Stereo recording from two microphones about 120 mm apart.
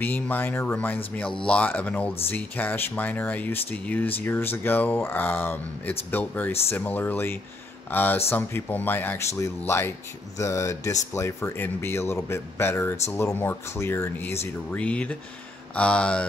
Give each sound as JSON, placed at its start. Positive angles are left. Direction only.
{"t": 0.0, "sound": "speech", "side_deg": 15}